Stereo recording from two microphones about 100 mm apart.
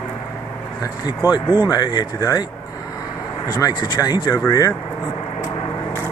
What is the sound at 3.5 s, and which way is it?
Speech, 40° left (ahead or behind).